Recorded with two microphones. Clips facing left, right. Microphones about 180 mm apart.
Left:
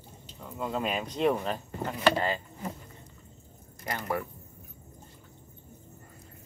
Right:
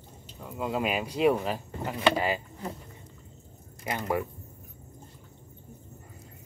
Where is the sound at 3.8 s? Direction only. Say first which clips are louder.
Right 3 dB; 15° right (ahead or behind).